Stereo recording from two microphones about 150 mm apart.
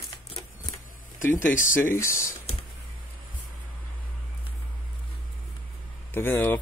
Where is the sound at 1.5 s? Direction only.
60° left (ahead or behind).